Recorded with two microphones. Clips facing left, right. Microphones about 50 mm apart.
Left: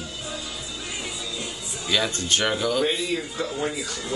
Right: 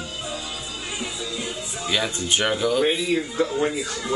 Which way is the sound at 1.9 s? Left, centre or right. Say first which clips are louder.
Even; centre.